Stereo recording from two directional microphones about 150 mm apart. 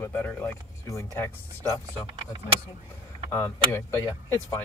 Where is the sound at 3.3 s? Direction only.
20° left (ahead or behind).